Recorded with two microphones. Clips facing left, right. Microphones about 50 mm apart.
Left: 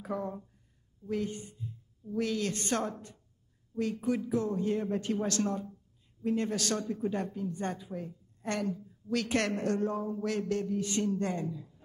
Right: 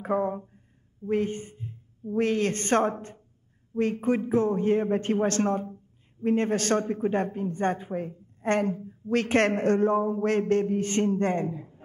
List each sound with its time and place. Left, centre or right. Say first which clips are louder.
0.0 s a woman's voice: right 9 dB; right